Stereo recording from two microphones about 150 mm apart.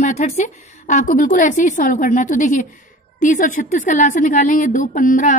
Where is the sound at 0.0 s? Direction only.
50° left (ahead or behind).